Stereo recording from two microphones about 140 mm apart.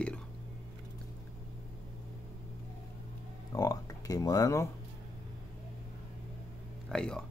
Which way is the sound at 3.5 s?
25° left (ahead or behind).